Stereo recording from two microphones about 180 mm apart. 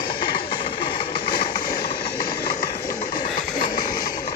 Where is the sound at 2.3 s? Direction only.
65° left (ahead or behind).